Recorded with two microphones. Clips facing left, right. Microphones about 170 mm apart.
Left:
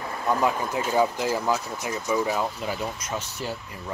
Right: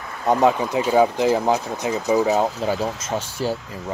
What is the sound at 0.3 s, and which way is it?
Speech, 20° right (ahead or behind).